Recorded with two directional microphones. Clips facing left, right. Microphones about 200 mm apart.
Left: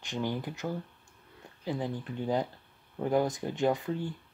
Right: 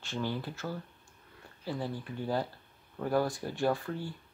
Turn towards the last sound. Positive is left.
turn(degrees=20)  # may be behind; listen again after turning